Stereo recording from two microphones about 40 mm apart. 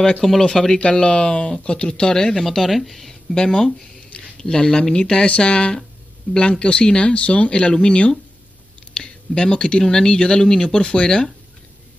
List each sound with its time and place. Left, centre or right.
0.2 s speech: centre
0.7 s speech: left
2.3 s speech: centre
4.4 s speech: left